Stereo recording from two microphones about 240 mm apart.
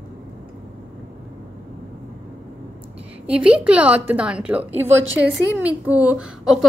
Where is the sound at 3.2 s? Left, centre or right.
Centre.